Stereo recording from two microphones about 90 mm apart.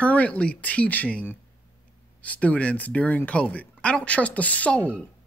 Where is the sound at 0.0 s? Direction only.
15° left (ahead or behind).